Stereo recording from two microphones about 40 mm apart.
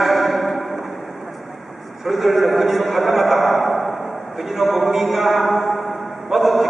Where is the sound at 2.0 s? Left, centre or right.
Centre.